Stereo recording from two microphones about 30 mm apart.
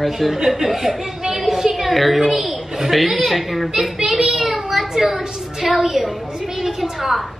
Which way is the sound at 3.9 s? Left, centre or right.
Centre.